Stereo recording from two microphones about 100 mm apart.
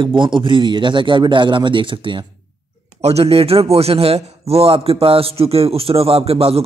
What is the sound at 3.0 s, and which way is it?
A man's voice, 90° right.